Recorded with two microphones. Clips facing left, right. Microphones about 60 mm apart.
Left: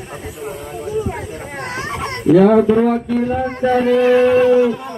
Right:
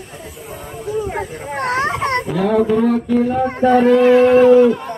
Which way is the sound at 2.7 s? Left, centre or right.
Left.